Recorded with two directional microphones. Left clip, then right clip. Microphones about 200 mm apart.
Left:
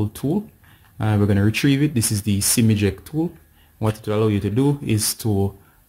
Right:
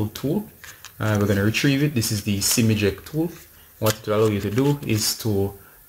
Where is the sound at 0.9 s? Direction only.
55° left (ahead or behind).